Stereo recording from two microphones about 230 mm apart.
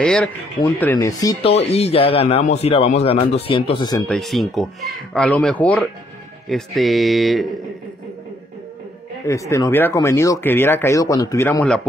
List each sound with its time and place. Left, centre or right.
0.0 s speech: centre
4.1 s speech: centre
9.3 s speech: centre